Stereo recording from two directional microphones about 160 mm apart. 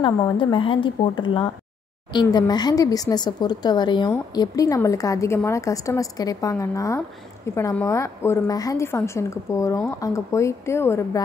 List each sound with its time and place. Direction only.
0.0 s a woman's voice: 30° left (ahead or behind)